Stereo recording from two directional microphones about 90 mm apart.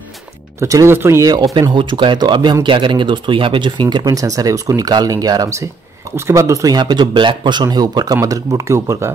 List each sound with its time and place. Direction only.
0.6 s speech: 35° right (ahead or behind)
1.3 s speech: 45° right (ahead or behind)
1.7 s speech: 65° right (ahead or behind); by 6.8 s 40° right (ahead or behind)
6.8 s speech: 55° right (ahead or behind); by 9.1 s 30° right (ahead or behind)